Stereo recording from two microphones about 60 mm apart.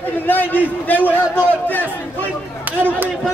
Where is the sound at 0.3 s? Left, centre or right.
Left.